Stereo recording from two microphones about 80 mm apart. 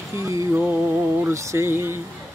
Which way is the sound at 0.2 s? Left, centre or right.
Right.